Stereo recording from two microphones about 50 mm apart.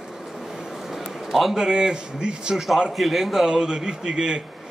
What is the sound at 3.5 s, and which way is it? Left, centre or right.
Speech, centre.